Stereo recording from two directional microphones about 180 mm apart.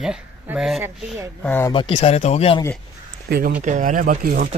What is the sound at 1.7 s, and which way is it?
Speech, 30° left (ahead or behind).